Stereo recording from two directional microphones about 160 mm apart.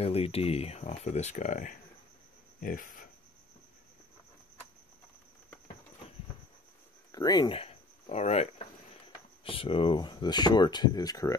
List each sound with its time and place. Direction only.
0.0 s speech: 40° left (ahead or behind); by 3.1 s 55° left (ahead or behind)
7.1 s speech: 25° left (ahead or behind)